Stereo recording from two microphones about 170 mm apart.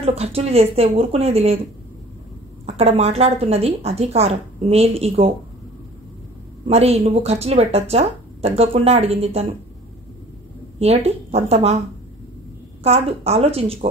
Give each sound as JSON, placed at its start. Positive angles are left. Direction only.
{"t": 0.0, "sound": "a woman's voice", "side_deg": -35}
{"t": 2.6, "sound": "a woman's voice", "side_deg": -35}
{"t": 6.7, "sound": "a woman's voice", "side_deg": -35}
{"t": 10.8, "sound": "a woman's voice", "side_deg": -35}
{"t": 12.8, "sound": "a woman's voice", "side_deg": -35}